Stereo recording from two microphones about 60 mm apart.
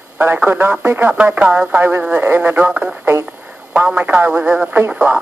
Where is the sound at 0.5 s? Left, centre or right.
Right.